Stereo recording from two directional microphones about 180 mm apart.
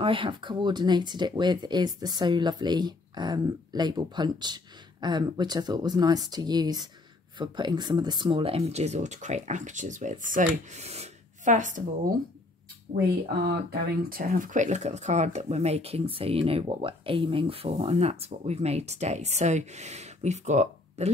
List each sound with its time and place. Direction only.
0.0 s speech: 30° right (ahead or behind); by 12.1 s 45° right (ahead or behind)
12.9 s speech: 60° right (ahead or behind); by 21.1 s 40° right (ahead or behind)